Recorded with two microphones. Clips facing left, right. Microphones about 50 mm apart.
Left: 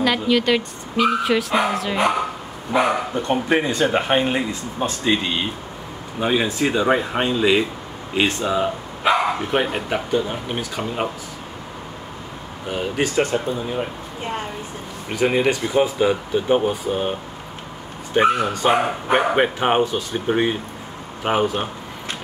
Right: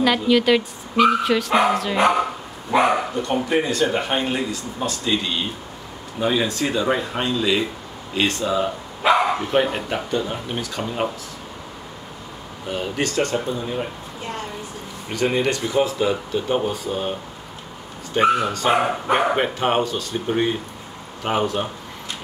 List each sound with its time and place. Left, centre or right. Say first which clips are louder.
0.0 s speech: right 1 dB; centre
3.4 s speech: left 1 dB; left
9.0 s speech: right 1 dB; centre
12.6 s speech: left 2 dB; centre
14.2 s speech: left 3 dB; left
15.0 s speech: left 2 dB; centre
18.1 s speech: left 1 dB; centre